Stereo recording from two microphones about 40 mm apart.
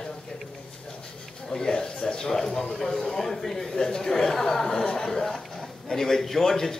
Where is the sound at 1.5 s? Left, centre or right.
Centre.